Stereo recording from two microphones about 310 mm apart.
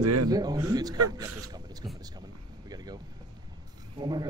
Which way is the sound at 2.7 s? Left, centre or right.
Centre.